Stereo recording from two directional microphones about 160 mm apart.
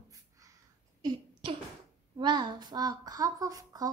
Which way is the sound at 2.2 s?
30° right (ahead or behind).